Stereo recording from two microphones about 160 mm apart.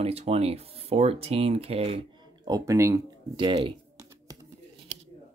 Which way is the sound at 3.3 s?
30° right (ahead or behind).